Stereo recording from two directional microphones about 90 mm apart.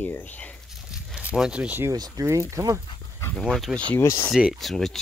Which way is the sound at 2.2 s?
30° right (ahead or behind).